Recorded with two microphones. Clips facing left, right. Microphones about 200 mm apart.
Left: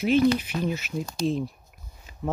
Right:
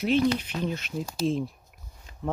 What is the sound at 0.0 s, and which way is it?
Speech, centre (ahead or behind).